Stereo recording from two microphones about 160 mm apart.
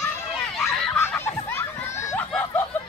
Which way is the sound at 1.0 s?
15° left (ahead or behind).